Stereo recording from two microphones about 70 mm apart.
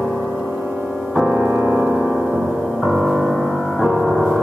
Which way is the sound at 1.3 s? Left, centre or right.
Right.